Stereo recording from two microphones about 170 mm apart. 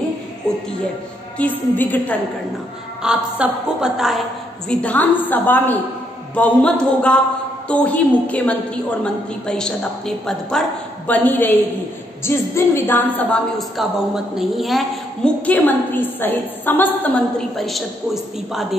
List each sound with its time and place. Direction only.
1.4 s a woman's voice: 10° left (ahead or behind)
3.0 s a woman's voice: 5° right (ahead or behind)
4.6 s a woman's voice: 10° left (ahead or behind)
13.6 s a woman's voice: centre (ahead or behind)